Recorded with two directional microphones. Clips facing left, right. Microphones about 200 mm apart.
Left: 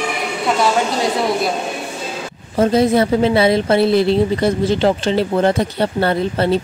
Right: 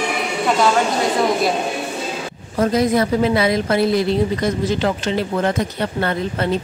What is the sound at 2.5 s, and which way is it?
A woman's voice, 25° left (ahead or behind).